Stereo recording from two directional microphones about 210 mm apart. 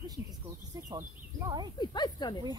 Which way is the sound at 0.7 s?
20° right (ahead or behind).